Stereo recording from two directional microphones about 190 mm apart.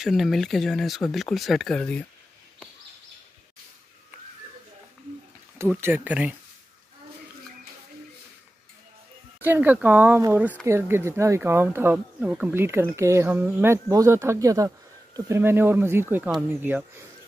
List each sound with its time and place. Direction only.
0.0 s speech: centre (ahead or behind)
5.6 s speech: 10° right (ahead or behind)
9.4 s speech: 10° right (ahead or behind)